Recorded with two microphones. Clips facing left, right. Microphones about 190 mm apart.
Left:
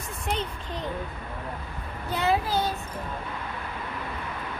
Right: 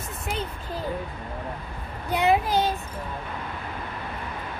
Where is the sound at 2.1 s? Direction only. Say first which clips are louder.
Right 4 dB; 20° right (ahead or behind).